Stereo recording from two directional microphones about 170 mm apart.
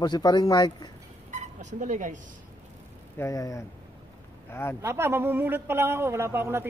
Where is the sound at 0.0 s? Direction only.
25° left (ahead or behind).